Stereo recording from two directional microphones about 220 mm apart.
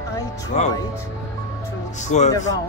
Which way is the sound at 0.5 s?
30° left (ahead or behind).